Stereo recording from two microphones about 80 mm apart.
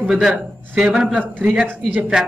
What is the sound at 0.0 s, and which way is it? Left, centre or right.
A man's voice, centre.